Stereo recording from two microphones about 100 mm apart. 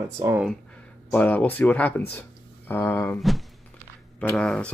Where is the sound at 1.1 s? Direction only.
15° left (ahead or behind).